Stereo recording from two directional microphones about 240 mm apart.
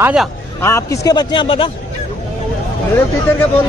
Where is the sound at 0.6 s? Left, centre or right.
Centre.